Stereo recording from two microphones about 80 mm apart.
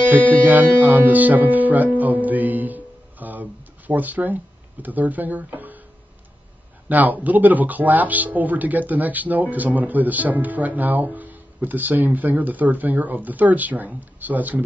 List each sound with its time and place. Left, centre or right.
0.5 s speech: right
6.9 s speech: right